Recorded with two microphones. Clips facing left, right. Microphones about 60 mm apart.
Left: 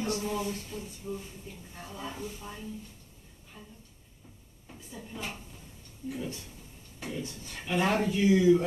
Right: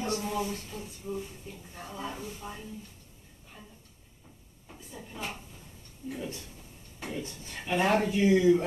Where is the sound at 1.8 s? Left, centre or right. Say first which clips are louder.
Right 1 dB; centre.